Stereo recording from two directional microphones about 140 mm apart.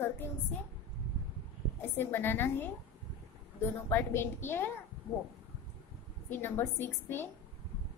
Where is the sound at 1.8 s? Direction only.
15° left (ahead or behind).